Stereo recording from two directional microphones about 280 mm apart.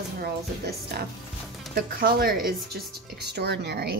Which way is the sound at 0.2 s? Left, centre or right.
Right.